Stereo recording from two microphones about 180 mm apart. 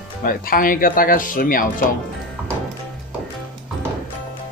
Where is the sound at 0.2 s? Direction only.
50° left (ahead or behind).